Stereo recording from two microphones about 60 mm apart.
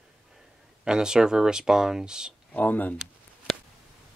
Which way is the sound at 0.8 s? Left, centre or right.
Centre.